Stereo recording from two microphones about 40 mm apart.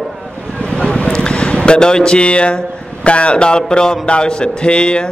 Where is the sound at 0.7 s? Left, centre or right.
Centre.